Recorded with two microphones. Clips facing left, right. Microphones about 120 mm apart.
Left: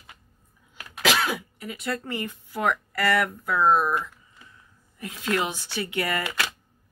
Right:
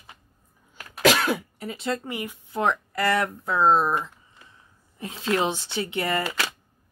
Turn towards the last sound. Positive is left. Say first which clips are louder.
# right 1 dB
turn(degrees=-30)  # may be behind; listen again after turning